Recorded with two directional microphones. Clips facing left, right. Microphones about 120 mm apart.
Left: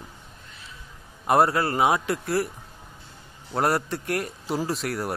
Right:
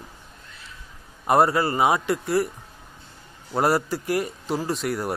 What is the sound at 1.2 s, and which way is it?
A man's voice, centre (ahead or behind).